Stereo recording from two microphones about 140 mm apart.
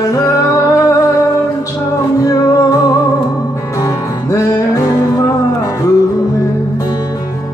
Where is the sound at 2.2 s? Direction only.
25° left (ahead or behind).